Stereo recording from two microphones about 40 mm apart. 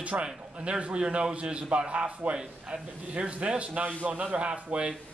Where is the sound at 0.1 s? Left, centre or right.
Right.